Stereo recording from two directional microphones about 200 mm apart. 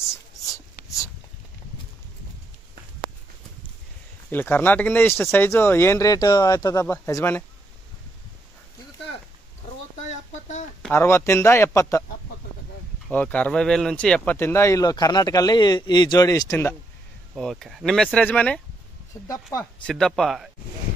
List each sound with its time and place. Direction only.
4.3 s speech: 10° left (ahead or behind)
10.8 s speech: 10° left (ahead or behind)
13.1 s speech: 5° left (ahead or behind)
17.4 s speech: centre (ahead or behind)
19.2 s speech: 15° left (ahead or behind)
19.6 s speech: 5° left (ahead or behind)